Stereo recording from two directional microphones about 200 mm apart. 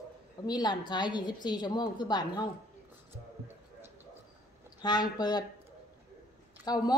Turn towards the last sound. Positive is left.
turn(degrees=20)  # may be behind; listen again after turning